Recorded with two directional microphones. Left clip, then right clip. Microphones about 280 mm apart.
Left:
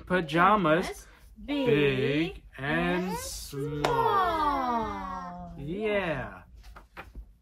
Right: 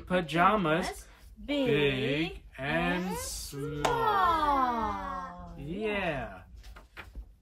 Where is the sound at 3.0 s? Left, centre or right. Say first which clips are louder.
Left 2 dB; centre.